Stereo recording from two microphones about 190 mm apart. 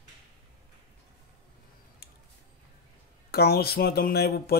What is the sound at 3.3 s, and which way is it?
A man's voice, 55° left (ahead or behind).